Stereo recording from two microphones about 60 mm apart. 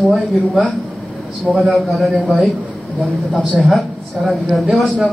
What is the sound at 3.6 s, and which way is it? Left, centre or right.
A man's voice, centre.